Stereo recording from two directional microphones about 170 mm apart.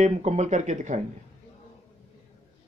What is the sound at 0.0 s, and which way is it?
Speech, 40° right (ahead or behind).